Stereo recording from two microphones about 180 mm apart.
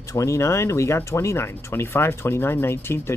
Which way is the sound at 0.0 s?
15° left (ahead or behind).